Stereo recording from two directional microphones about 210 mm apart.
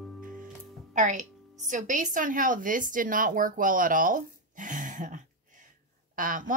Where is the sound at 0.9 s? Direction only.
35° right (ahead or behind).